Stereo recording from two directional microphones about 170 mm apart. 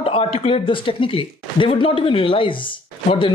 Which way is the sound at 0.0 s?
35° left (ahead or behind).